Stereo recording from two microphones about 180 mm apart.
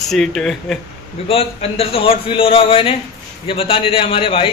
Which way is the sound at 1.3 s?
30° left (ahead or behind).